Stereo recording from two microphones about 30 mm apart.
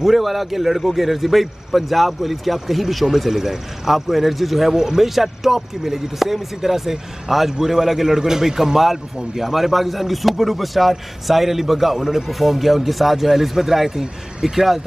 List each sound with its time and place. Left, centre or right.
0.0 s a man's voice: centre
3.2 s a man's voice: centre
4.7 s a man's voice: centre